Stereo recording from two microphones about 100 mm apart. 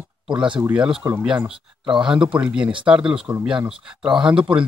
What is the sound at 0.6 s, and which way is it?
Speech, 10° right (ahead or behind).